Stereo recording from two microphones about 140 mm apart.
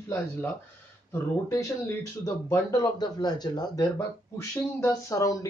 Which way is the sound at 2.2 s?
25° left (ahead or behind).